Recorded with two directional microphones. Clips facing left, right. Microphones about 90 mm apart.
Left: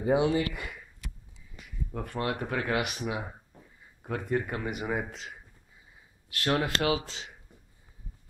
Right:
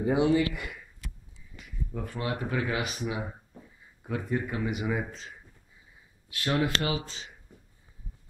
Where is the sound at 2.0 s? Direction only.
60° left (ahead or behind).